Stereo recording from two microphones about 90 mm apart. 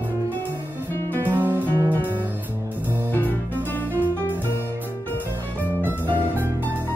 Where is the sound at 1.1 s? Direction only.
25° right (ahead or behind).